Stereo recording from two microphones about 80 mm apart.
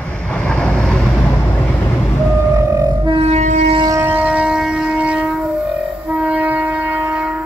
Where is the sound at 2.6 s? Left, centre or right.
Right.